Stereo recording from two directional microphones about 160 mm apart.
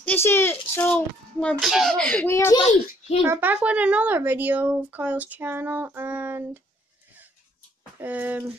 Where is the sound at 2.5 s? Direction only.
40° left (ahead or behind).